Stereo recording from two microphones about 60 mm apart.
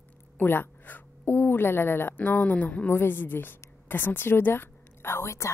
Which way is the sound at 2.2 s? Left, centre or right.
Left.